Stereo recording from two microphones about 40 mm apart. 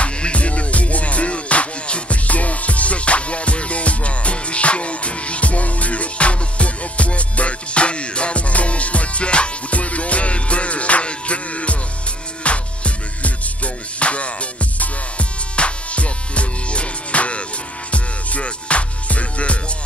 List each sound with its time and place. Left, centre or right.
0.0 s music: left